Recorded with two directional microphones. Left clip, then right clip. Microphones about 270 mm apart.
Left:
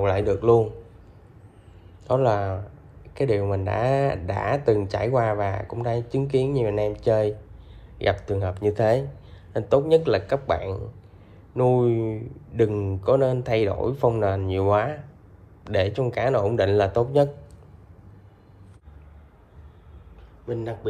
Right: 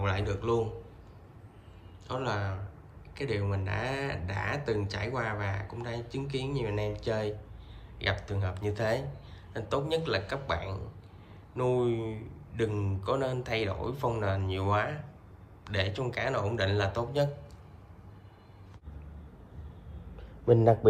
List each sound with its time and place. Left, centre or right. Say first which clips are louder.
0.0 s speech: left 12 dB; centre
2.0 s speech: left 12 dB; centre
20.5 s speech: right 8 dB; centre